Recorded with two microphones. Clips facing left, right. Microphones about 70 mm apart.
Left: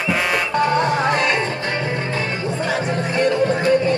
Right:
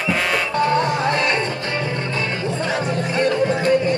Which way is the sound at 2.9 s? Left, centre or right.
Left.